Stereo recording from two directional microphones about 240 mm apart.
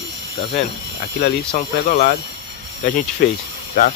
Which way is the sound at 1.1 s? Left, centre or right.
Left.